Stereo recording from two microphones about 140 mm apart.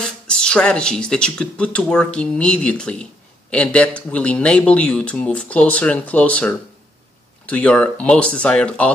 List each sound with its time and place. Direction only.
0.0 s speech: 5° left (ahead or behind)